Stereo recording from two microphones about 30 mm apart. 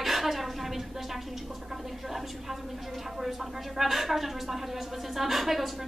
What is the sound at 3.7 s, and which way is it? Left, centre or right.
A woman's voice, centre.